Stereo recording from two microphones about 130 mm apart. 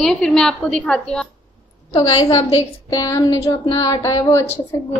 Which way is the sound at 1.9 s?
35° left (ahead or behind).